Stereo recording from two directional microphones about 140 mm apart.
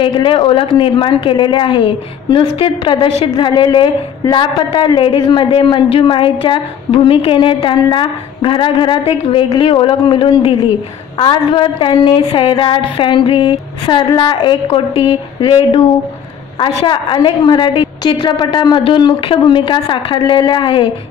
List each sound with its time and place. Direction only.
0.0 s a man's voice: 35° left (ahead or behind)